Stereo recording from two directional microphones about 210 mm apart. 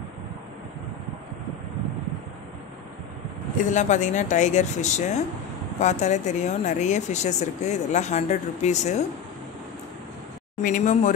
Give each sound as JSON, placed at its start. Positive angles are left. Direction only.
{"t": 3.7, "sound": "speech", "side_deg": 35}
{"t": 10.6, "sound": "speech", "side_deg": 35}